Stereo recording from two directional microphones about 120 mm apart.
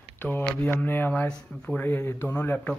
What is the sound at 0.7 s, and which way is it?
Speech, 15° left (ahead or behind).